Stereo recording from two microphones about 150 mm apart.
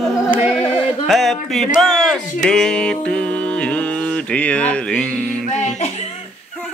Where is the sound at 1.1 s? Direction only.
Centre (ahead or behind).